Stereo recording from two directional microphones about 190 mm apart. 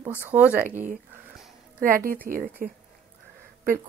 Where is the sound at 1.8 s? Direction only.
50° right (ahead or behind).